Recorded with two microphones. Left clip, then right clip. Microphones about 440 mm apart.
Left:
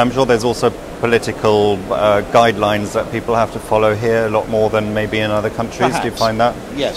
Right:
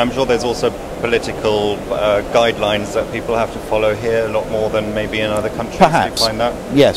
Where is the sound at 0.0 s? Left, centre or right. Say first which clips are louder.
Left 2 dB; left.